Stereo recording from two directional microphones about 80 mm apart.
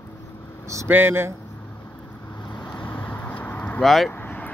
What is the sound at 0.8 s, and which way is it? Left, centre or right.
Speech, right.